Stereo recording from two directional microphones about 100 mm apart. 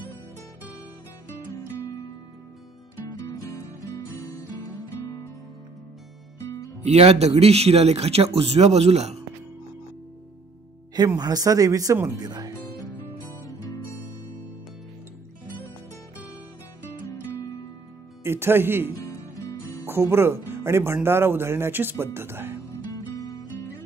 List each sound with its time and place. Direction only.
6.9 s a man's voice: 90° right
11.1 s speech: 40° right (ahead or behind)
18.2 s speech: 25° right (ahead or behind)